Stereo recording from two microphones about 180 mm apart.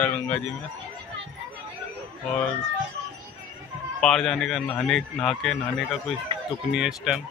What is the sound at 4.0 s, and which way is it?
Speech, 5° left (ahead or behind).